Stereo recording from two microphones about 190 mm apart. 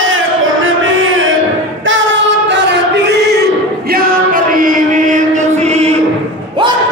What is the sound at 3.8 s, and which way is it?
Singing, 50° right (ahead or behind).